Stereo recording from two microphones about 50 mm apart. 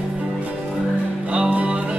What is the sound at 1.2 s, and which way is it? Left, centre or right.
Music, right.